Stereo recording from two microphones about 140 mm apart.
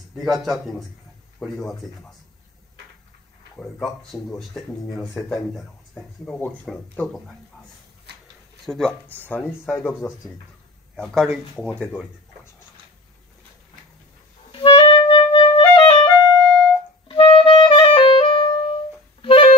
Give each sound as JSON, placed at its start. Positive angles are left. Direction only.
{"t": 0.1, "sound": "speech", "side_deg": 0}
{"t": 3.5, "sound": "speech", "side_deg": 5}
{"t": 8.6, "sound": "speech", "side_deg": 0}
{"t": 11.5, "sound": "speech", "side_deg": 5}
{"t": 14.5, "sound": "clarinet", "side_deg": 35}
{"t": 16.3, "sound": "music", "side_deg": 5}
{"t": 17.1, "sound": "clarinet", "side_deg": 35}
{"t": 19.2, "sound": "music", "side_deg": 40}